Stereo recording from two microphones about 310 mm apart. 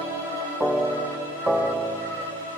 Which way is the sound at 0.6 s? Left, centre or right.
Centre.